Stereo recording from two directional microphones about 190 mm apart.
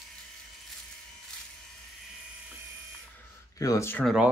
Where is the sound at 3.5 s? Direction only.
15° left (ahead or behind).